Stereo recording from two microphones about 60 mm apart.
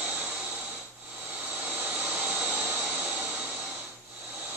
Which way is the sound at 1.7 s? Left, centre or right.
Right.